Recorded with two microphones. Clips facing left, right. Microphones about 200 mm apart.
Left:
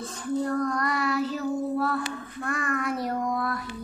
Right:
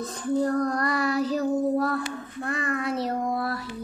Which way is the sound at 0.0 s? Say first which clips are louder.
Right 3 dB; 35° right (ahead or behind).